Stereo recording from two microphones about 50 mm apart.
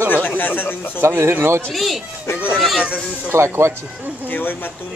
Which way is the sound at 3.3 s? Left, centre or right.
Right.